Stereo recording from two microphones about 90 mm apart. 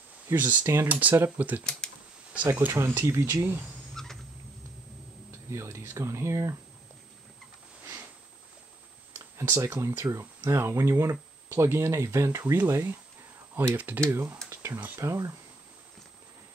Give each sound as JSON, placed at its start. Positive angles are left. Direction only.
{"t": 0.3, "sound": "speech", "side_deg": -25}
{"t": 1.6, "sound": "speech", "side_deg": 10}
{"t": 2.5, "sound": "speech", "side_deg": -25}
{"t": 3.9, "sound": "rodents", "side_deg": 5}
{"t": 5.5, "sound": "speech", "side_deg": -30}
{"t": 9.4, "sound": "speech", "side_deg": -30}
{"t": 14.5, "sound": "a sound", "side_deg": -30}
{"t": 15.0, "sound": "speech", "side_deg": -35}